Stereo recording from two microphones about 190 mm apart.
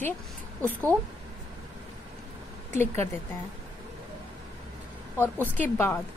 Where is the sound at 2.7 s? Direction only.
10° left (ahead or behind).